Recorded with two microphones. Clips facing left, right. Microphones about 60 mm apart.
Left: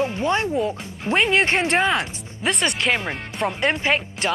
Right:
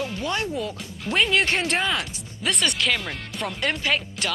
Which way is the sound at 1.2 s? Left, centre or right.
Centre.